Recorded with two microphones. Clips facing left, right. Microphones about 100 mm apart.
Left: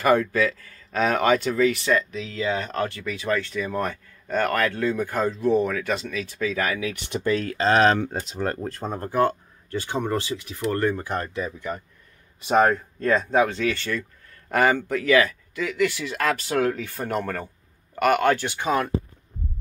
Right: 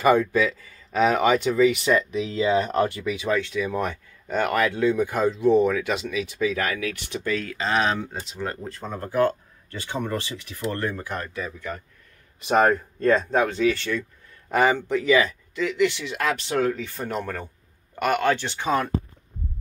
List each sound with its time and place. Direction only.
0.0 s speech: 5° right (ahead or behind)
1.9 s speech: 20° right (ahead or behind)
6.5 s speech: centre (ahead or behind)
7.1 s speech: 35° left (ahead or behind); by 8.3 s 55° left (ahead or behind)
8.3 s speech: 45° left (ahead or behind)
9.1 s speech: 25° left (ahead or behind)
12.4 s speech: 5° left (ahead or behind)
14.5 s speech: 15° right (ahead or behind)
15.5 s speech: 5° left (ahead or behind)
17.2 s speech: 15° right (ahead or behind)
17.9 s speech: 5° left (ahead or behind)